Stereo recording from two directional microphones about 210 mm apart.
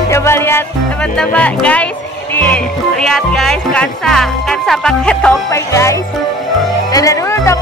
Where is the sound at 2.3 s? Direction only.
5° left (ahead or behind).